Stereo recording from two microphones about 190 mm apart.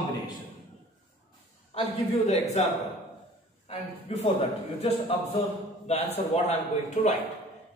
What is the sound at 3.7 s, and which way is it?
Speech, 30° left (ahead or behind).